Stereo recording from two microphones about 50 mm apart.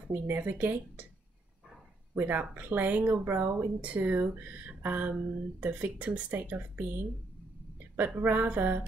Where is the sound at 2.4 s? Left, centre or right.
Right.